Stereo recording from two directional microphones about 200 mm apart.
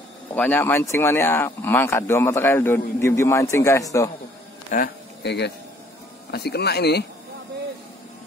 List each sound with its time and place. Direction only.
0.3 s speech: 10° left (ahead or behind)
4.6 s a sound: 45° left (ahead or behind)
6.3 s speech: 55° left (ahead or behind)